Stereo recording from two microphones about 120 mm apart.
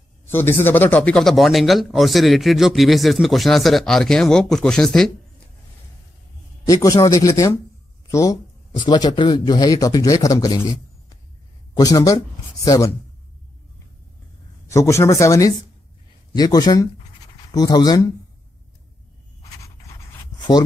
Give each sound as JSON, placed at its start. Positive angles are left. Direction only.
{"t": 0.2, "sound": "speech", "side_deg": 20}
{"t": 6.6, "sound": "a man's voice", "side_deg": 30}
{"t": 11.7, "sound": "speech", "side_deg": 30}
{"t": 14.7, "sound": "a man's voice", "side_deg": 25}